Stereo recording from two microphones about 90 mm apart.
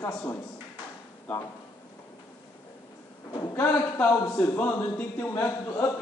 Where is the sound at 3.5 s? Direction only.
20° left (ahead or behind).